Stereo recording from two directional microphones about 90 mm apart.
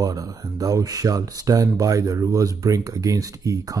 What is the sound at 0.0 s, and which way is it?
Speech, 40° right (ahead or behind).